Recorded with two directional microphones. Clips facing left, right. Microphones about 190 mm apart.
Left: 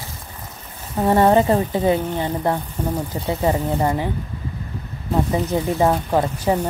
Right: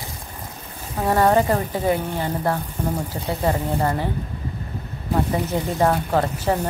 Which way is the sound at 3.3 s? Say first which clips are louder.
Left 2 dB; 15° left (ahead or behind).